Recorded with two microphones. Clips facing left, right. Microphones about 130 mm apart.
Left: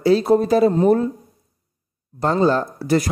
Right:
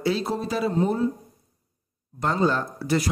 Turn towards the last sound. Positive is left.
turn(degrees=45)  # may be behind; listen again after turning